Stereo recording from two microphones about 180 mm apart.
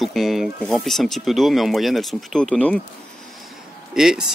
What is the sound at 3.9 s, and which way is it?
Speech, 5° right (ahead or behind).